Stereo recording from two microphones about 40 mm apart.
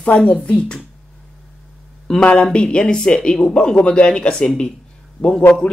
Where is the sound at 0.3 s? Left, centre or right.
Left.